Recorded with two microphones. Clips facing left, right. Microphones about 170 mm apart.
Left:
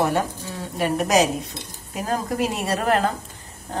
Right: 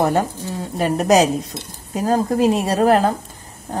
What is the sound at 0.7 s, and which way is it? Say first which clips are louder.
A woman's voice: right 4 dB; 35° right (ahead or behind).